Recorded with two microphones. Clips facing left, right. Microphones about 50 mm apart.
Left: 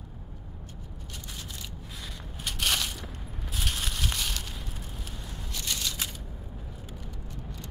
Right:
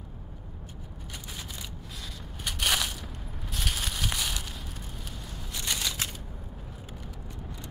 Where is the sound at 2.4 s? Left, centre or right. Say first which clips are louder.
Right 1 dB; centre.